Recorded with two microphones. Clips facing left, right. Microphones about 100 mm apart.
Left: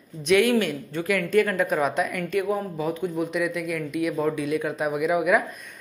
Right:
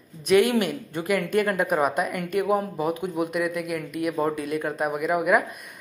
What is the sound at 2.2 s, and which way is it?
Speech, 50° right (ahead or behind).